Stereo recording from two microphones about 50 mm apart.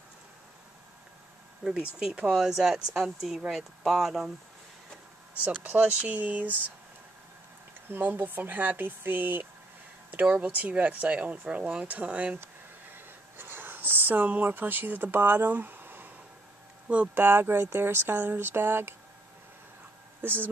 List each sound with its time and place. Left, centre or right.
1.6 s speech: centre
5.6 s speech: right
8.0 s speech: right
10.4 s speech: right
12.9 s a sound: right
16.8 s speech: right
17.1 s a woman's voice: right
20.2 s speech: right